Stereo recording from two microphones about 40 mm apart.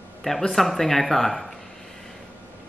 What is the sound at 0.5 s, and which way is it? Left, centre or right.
Speech, centre.